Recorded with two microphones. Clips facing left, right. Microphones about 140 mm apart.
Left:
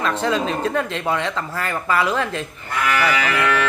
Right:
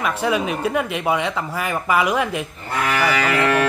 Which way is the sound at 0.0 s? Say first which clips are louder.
Even; 10° right (ahead or behind).